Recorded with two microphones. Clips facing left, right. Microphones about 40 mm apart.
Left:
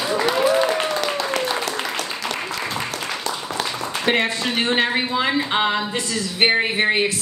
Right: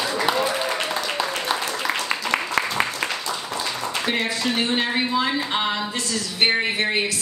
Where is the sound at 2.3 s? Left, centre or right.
Right.